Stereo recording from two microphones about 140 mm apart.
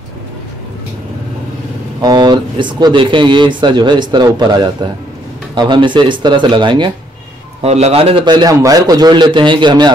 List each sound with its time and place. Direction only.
2.0 s speech: 30° right (ahead or behind)
7.6 s a man's voice: 50° right (ahead or behind); by 9.9 s 35° right (ahead or behind)